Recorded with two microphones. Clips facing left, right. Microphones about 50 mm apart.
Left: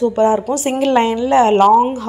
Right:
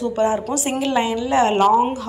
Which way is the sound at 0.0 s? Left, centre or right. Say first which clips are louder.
Left 6 dB; left.